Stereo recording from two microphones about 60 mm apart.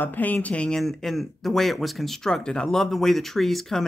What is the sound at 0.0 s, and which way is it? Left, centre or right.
Speech, left.